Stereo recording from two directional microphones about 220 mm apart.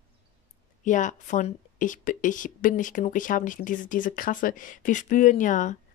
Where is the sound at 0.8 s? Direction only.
35° left (ahead or behind).